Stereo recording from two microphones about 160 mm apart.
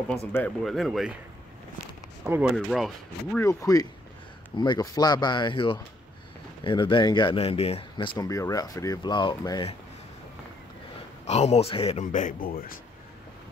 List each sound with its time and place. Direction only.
0.3 s speech: 15° left (ahead or behind)
0.7 s speech: centre (ahead or behind)
2.4 s speech: centre (ahead or behind)
3.3 s speech: 20° left (ahead or behind); by 8.1 s 40° left (ahead or behind)
8.2 s speech: 20° left (ahead or behind)
11.2 s speech: 45° left (ahead or behind)
12.0 s speech: 50° left (ahead or behind)